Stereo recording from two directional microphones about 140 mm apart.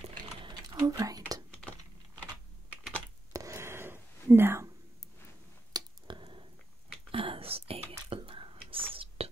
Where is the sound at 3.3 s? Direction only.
20° right (ahead or behind).